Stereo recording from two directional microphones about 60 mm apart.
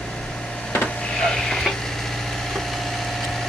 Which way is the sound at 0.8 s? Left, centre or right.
Centre.